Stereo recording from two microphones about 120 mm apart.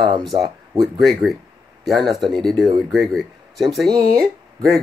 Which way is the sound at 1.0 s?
Centre (ahead or behind).